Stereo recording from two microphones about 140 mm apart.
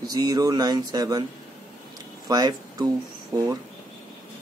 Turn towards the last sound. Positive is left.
turn(degrees=-25)  # may be behind; listen again after turning